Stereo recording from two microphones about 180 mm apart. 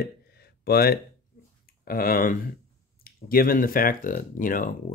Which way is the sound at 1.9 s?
55° left (ahead or behind).